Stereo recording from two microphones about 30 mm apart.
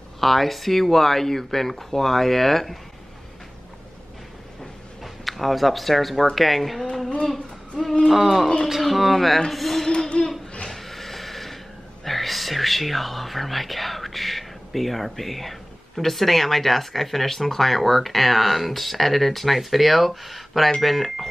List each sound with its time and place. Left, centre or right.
0.2 s speech: centre
5.0 s speech: centre
8.1 s speech: centre
9.8 s a sound: left
10.7 s a sound: centre
16.0 s speech: centre